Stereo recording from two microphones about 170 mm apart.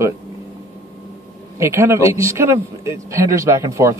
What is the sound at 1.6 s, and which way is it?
Speech, 15° right (ahead or behind).